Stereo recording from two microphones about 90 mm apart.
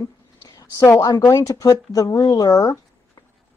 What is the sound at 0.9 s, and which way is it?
A woman's voice, 40° left (ahead or behind).